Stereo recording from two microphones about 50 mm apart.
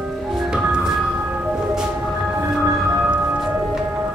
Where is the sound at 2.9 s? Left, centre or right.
Centre.